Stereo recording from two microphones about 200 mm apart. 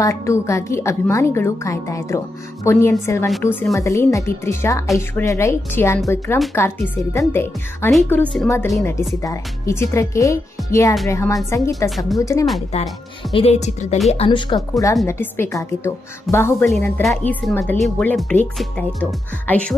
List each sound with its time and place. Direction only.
0.0 s a woman's voice: 15° left (ahead or behind)
12.7 s a woman's voice: 30° left (ahead or behind); by 19.6 s 5° left (ahead or behind)